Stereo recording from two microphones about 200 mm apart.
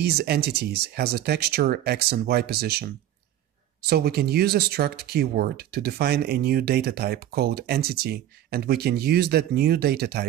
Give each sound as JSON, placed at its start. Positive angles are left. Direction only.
{"t": 0.0, "sound": "speech", "side_deg": -50}
{"t": 3.9, "sound": "speech", "side_deg": -50}